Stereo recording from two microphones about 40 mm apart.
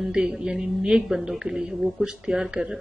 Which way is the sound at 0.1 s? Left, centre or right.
Centre.